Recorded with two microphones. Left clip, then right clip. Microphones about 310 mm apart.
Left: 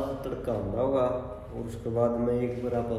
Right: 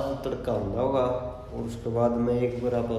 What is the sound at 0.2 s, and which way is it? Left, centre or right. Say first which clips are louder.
A man's voice: right 3 dB; centre.